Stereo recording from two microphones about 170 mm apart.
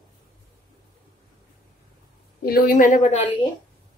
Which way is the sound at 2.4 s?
65° left (ahead or behind).